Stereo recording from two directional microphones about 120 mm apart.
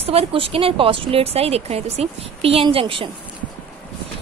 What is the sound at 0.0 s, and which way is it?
A woman's voice, 55° right (ahead or behind).